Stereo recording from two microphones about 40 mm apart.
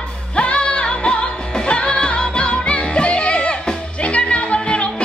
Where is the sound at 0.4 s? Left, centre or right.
Left.